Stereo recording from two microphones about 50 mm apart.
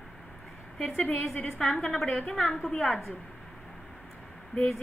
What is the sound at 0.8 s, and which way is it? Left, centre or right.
A woman's voice, centre.